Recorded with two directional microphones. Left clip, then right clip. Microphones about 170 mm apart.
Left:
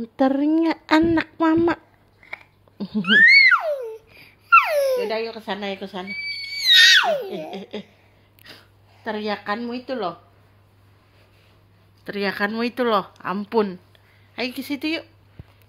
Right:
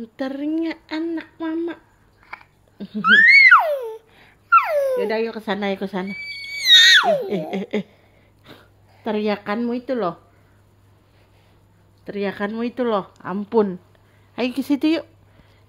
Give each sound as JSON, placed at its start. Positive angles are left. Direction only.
{"t": 0.2, "sound": "speech", "side_deg": 40}
{"t": 0.8, "sound": "speech", "side_deg": 65}
{"t": 2.8, "sound": "speech", "side_deg": 35}
{"t": 3.3, "sound": "music", "side_deg": -15}
{"t": 4.2, "sound": "a sound", "side_deg": 0}
{"t": 5.0, "sound": "speech", "side_deg": -55}
{"t": 6.6, "sound": "screaming", "side_deg": -15}
{"t": 7.5, "sound": "speech", "side_deg": -65}
{"t": 12.0, "sound": "speech", "side_deg": -10}
{"t": 14.3, "sound": "a woman's voice", "side_deg": -45}